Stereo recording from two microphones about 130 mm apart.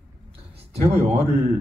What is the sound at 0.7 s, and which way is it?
Speech, 50° right (ahead or behind).